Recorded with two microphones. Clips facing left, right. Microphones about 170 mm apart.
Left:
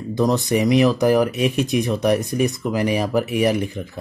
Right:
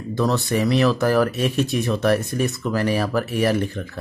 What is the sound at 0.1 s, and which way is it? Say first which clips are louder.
Speech: left 2 dB; 15° left (ahead or behind).